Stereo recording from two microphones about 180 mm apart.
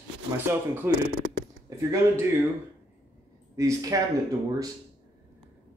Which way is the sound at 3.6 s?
20° right (ahead or behind).